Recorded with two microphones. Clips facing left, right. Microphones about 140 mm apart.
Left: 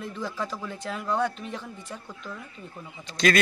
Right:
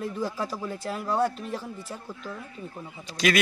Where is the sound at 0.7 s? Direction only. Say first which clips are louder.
Right 2 dB; 40° right (ahead or behind).